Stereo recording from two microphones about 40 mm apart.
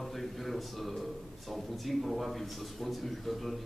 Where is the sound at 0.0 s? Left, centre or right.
Centre.